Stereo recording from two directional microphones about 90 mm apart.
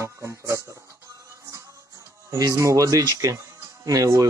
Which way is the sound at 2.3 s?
35° right (ahead or behind).